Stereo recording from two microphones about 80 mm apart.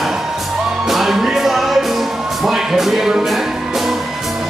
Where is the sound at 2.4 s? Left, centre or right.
Centre.